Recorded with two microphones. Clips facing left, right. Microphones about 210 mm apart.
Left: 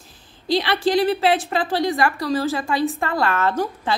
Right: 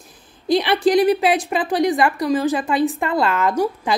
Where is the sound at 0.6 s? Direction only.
15° right (ahead or behind).